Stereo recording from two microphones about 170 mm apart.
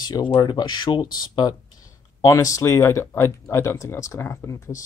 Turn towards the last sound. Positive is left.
turn(degrees=15)  # may be behind; listen again after turning